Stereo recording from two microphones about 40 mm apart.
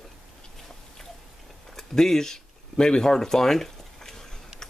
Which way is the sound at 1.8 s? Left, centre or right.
Centre.